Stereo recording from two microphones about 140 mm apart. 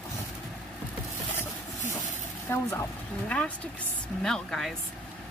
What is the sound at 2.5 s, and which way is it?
A woman's voice, 20° left (ahead or behind).